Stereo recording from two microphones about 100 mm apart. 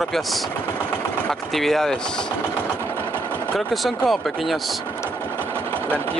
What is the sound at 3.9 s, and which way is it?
Speech, centre (ahead or behind).